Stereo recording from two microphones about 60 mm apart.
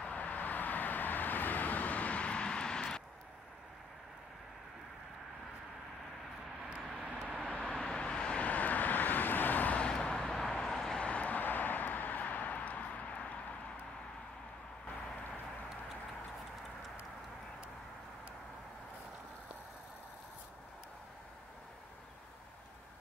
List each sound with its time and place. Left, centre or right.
0.0 s vehicle: left
7.4 s vehicle: centre